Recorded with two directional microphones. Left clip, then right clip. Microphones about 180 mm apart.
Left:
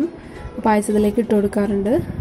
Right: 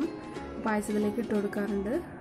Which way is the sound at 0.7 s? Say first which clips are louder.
Left 13 dB; 20° left (ahead or behind).